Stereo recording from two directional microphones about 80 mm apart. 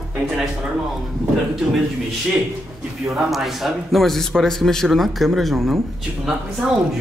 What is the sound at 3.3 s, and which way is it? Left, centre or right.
A woman's voice, centre.